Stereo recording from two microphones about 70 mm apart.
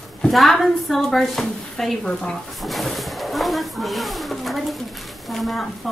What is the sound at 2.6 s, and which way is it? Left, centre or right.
A woman's voice, centre.